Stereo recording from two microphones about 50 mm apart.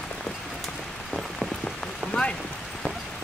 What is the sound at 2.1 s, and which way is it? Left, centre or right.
Rain on surface, left.